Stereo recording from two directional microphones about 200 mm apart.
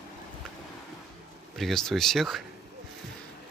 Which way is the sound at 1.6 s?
Centre (ahead or behind).